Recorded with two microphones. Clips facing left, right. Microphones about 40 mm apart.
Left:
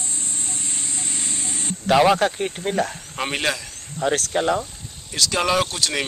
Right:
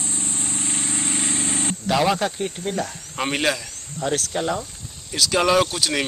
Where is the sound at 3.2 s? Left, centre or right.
Centre.